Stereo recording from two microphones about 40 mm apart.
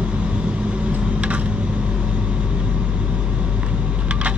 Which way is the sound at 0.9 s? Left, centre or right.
Right.